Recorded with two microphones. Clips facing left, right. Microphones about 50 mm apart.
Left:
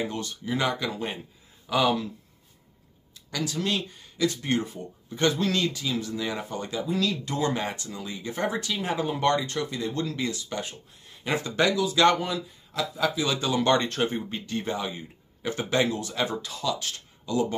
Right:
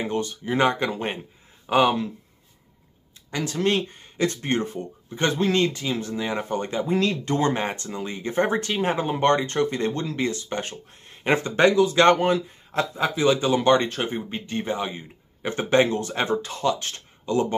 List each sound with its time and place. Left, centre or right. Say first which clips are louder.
0.0 s speech: right 4 dB; right
3.3 s speech: right 5 dB; right
6.5 s speech: right 5 dB; right
9.9 s speech: right 3 dB; right